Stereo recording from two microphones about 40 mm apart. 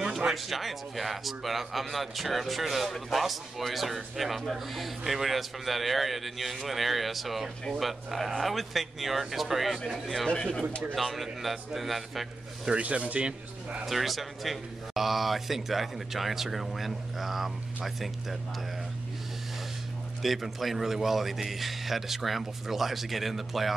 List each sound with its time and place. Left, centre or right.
0.0 s a sound: centre
0.3 s speech: centre
10.2 s speech: centre
11.0 s speech: centre
12.6 s speech: right
13.8 s speech: centre
20.2 s speech: centre